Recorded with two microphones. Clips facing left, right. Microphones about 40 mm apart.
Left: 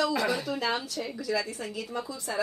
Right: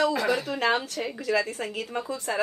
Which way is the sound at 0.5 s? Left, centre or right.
Right.